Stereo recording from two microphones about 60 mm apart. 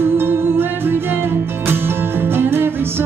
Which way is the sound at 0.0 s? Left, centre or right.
Right.